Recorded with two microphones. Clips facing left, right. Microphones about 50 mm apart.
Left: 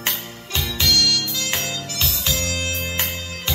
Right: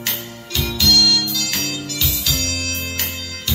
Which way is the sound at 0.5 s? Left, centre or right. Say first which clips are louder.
Right 3 dB; left.